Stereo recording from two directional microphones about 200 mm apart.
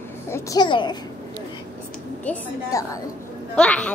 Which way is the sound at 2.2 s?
10° left (ahead or behind).